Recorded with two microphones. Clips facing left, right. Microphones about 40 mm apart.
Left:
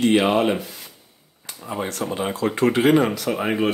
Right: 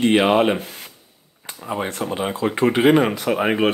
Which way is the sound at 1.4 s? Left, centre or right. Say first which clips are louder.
Right 2 dB; right.